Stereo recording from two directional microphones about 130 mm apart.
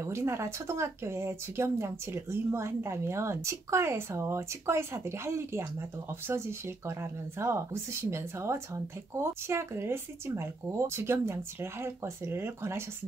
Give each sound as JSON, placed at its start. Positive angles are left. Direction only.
{"t": 0.0, "sound": "speech", "side_deg": -20}